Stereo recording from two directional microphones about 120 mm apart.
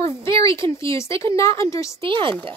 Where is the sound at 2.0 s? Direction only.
45° right (ahead or behind).